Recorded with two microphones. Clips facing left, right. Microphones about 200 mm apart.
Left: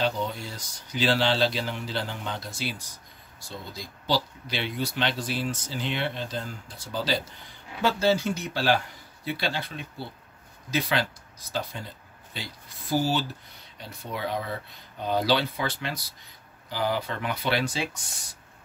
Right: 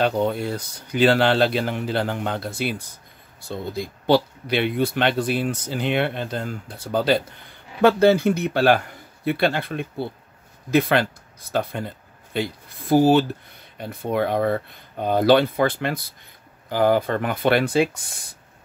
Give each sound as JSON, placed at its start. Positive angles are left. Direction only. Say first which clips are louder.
{"t": 0.0, "sound": "speech", "louder": "right 7 dB", "side_deg": -55}